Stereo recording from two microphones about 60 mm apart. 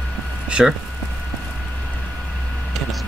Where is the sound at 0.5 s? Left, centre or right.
Centre.